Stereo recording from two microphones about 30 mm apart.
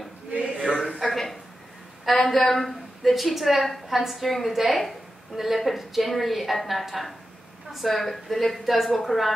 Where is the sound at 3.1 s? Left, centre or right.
Centre.